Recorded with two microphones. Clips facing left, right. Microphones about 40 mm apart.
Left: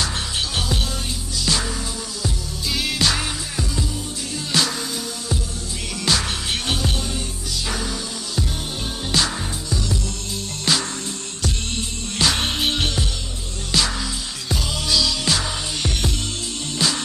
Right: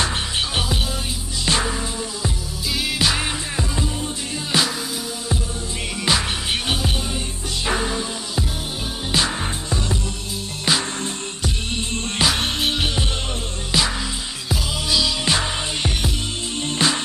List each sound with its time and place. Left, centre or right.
1.4 s music: right
2.7 s music: centre
6.1 s music: centre
7.6 s music: right
9.1 s music: right
9.7 s music: right
10.7 s music: centre
12.3 s music: centre
13.7 s music: centre